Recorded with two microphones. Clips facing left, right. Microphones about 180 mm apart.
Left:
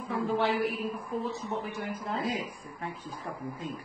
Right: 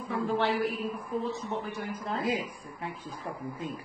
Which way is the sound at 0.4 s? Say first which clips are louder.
Even; centre (ahead or behind).